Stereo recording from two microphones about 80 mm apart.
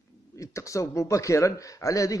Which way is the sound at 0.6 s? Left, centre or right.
Left.